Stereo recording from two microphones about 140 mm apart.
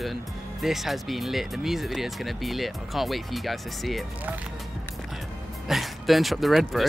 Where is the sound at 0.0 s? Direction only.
Centre (ahead or behind).